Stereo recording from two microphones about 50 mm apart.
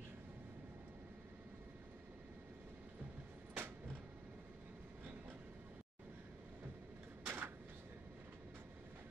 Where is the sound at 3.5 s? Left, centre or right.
Right.